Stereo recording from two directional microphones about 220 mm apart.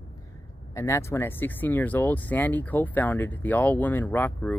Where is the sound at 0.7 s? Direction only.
15° left (ahead or behind).